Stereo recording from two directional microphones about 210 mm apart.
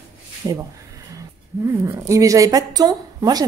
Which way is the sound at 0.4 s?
20° right (ahead or behind).